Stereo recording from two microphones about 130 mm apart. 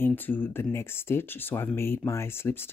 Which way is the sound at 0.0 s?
15° left (ahead or behind).